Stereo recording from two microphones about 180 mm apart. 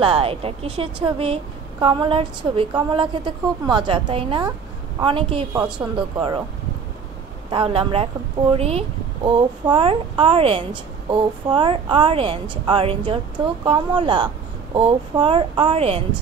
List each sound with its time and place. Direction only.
0.0 s speech: 30° right (ahead or behind)
5.5 s a woman's voice: 15° right (ahead or behind)
7.5 s speech: 30° right (ahead or behind)